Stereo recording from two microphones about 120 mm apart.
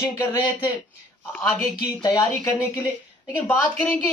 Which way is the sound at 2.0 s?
35° left (ahead or behind).